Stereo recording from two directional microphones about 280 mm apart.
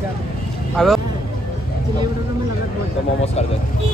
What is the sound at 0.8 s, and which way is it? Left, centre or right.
Speech, centre.